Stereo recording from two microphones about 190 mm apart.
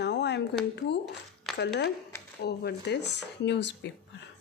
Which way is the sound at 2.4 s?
60° left (ahead or behind).